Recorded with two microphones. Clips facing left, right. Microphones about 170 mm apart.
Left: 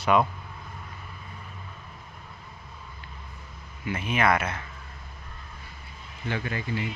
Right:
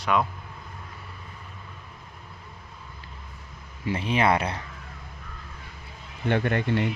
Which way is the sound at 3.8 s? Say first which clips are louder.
Right 2 dB; 30° right (ahead or behind).